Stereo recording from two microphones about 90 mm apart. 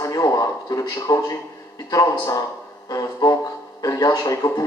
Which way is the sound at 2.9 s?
40° left (ahead or behind).